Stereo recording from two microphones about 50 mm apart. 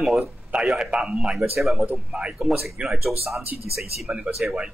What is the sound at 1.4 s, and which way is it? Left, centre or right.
Speech, centre.